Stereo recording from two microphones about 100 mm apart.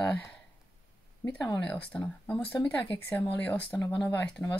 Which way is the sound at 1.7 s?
10° left (ahead or behind).